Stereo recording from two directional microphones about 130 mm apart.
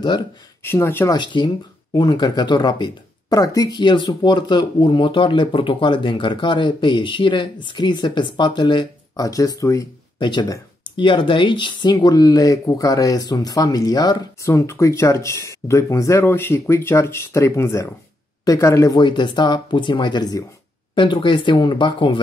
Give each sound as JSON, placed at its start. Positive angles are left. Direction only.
{"t": 0.6, "sound": "speech", "side_deg": 20}
{"t": 1.1, "sound": "speech", "side_deg": 35}
{"t": 10.2, "sound": "speech", "side_deg": 35}
{"t": 18.9, "sound": "speech", "side_deg": 35}